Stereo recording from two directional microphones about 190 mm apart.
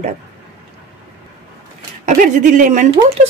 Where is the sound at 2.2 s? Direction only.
40° right (ahead or behind).